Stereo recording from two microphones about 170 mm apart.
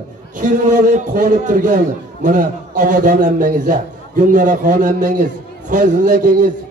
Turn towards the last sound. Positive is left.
turn(degrees=-50)  # may be behind; listen again after turning